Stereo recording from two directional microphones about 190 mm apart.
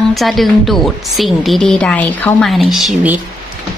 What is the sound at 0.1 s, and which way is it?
A woman's voice, centre (ahead or behind).